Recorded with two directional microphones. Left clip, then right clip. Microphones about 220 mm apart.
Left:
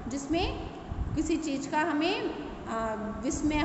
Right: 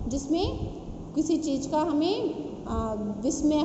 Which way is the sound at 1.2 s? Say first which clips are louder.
Right 4 dB; 10° left (ahead or behind).